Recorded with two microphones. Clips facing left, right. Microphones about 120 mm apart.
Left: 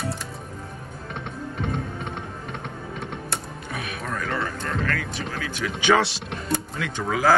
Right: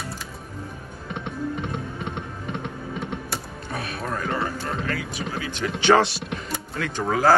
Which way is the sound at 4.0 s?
5° right (ahead or behind).